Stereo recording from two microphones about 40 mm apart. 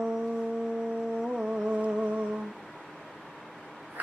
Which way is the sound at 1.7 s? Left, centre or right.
Right.